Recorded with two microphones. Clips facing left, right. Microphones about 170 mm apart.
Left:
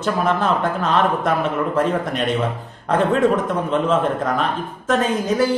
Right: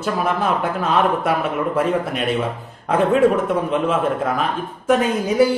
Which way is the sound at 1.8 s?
5° right (ahead or behind).